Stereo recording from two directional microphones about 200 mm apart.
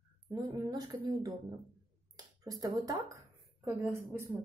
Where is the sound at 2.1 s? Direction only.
20° right (ahead or behind).